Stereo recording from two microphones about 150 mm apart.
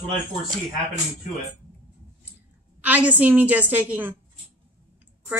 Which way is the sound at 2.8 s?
10° right (ahead or behind).